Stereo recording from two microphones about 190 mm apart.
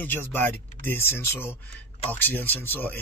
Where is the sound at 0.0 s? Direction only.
10° left (ahead or behind).